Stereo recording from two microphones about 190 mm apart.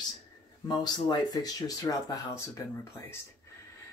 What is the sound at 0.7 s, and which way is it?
Speech, 20° left (ahead or behind).